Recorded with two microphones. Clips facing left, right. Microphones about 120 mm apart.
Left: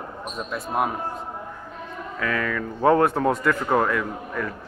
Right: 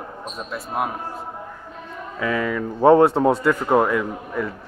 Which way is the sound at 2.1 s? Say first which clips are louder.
Right 3 dB; 20° right (ahead or behind).